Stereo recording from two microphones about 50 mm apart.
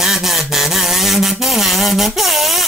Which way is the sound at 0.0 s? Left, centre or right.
Centre.